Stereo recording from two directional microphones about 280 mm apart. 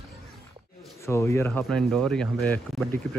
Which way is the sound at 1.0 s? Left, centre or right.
Centre.